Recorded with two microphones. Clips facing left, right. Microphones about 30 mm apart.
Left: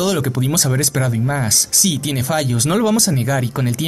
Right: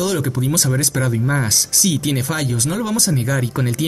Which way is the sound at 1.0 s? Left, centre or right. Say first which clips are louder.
Even; centre.